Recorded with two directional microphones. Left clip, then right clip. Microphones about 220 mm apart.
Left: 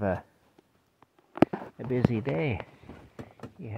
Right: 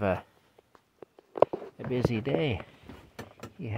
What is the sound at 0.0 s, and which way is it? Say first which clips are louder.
Speech: right 1 dB; 5° right (ahead or behind).